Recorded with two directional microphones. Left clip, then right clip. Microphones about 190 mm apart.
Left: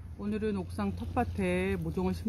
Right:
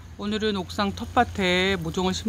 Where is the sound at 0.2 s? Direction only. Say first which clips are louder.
Right 8 dB; 5° right (ahead or behind).